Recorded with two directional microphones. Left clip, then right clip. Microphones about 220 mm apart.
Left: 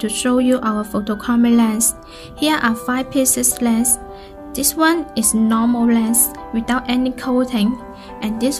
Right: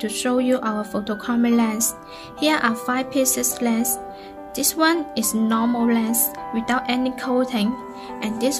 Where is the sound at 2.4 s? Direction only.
5° left (ahead or behind).